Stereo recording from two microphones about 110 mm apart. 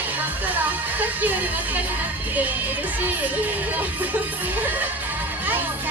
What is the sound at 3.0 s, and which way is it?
Music, 15° right (ahead or behind).